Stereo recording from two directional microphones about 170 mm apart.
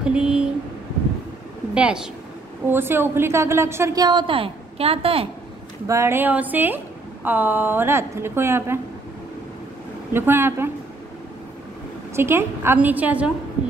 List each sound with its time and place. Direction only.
0.0 s speech: 5° right (ahead or behind)
1.7 s a woman's voice: 5° right (ahead or behind); by 5.3 s 35° right (ahead or behind)
5.9 s a woman's voice: 15° right (ahead or behind)
10.1 s a woman's voice: 15° right (ahead or behind)
12.2 s a woman's voice: 15° right (ahead or behind)